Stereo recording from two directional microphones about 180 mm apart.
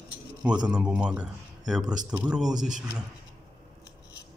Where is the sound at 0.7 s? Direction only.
5° right (ahead or behind).